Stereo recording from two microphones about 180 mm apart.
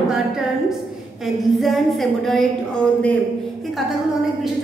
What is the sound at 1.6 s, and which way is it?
Speech, centre (ahead or behind).